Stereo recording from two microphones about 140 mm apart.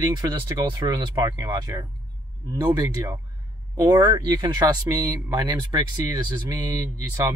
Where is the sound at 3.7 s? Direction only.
25° right (ahead or behind).